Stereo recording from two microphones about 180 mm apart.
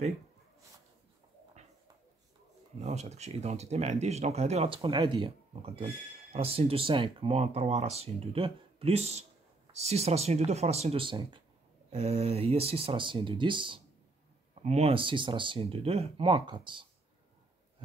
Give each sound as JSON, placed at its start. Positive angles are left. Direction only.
{"t": 2.8, "sound": "speech", "side_deg": -40}